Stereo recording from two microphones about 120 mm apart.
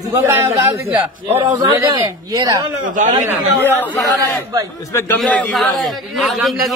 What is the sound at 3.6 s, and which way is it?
A man's voice, 15° left (ahead or behind).